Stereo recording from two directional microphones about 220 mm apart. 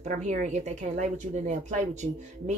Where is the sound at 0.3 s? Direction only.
35° right (ahead or behind).